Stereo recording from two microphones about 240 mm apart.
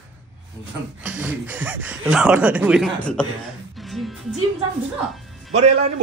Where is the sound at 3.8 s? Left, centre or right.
Centre.